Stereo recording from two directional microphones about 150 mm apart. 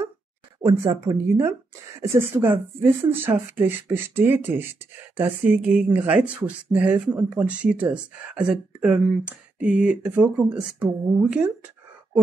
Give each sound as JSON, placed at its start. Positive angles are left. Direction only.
{"t": 1.0, "sound": "speech", "side_deg": -20}